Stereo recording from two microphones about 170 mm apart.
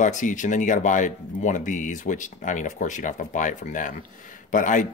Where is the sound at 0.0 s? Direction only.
50° left (ahead or behind).